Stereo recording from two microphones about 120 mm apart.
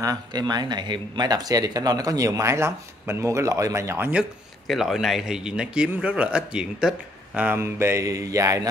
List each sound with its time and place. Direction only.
0.0 s speech: 35° right (ahead or behind)
4.1 s a man's voice: 5° right (ahead or behind)
7.3 s speech: 15° right (ahead or behind)